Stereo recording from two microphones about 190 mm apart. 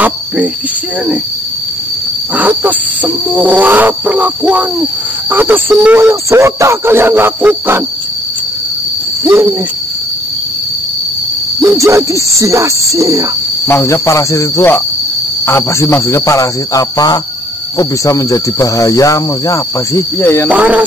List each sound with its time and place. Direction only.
2.3 s speech: 10° right (ahead or behind)
9.2 s speech: 15° right (ahead or behind)
11.6 s speech: 15° right (ahead or behind)
13.7 s speech: 15° left (ahead or behind)
20.4 s speech: 10° right (ahead or behind)